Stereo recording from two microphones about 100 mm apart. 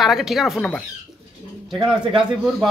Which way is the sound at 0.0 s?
Centre (ahead or behind).